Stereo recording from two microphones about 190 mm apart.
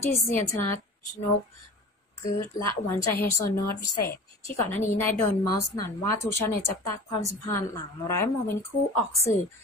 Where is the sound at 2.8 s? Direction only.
15° left (ahead or behind).